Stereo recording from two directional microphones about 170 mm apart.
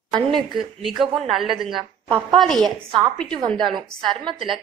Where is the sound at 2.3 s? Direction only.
Centre (ahead or behind).